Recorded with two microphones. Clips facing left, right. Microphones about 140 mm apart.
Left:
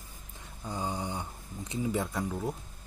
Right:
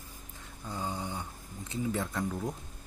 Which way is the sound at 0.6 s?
15° left (ahead or behind).